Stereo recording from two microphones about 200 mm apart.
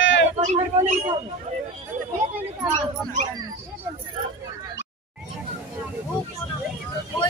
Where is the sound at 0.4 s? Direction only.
35° right (ahead or behind).